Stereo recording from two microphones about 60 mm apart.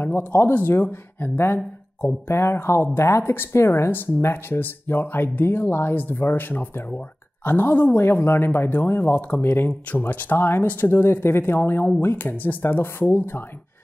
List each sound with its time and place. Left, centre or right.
0.0 s speech: left